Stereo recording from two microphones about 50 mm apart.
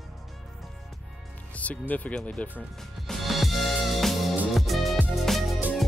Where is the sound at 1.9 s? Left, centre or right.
Left.